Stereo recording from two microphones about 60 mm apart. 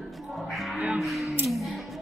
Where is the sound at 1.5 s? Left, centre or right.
Centre.